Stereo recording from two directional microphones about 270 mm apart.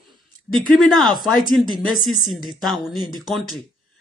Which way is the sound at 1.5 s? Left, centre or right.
Centre.